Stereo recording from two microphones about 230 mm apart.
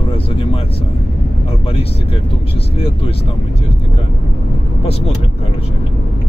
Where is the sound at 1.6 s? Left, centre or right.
Left.